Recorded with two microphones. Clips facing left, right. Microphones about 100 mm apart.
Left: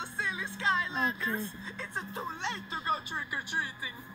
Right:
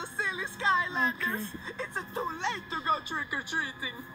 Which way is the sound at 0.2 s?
20° right (ahead or behind).